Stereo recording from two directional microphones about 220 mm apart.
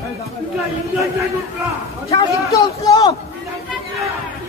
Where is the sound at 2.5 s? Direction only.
15° left (ahead or behind).